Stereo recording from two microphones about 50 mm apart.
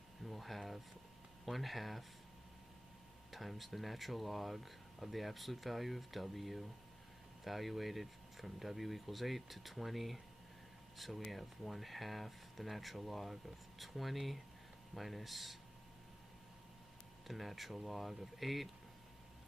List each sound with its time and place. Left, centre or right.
0.2 s a sound: centre
1.4 s speech: centre
3.3 s speech: centre
17.3 s speech: centre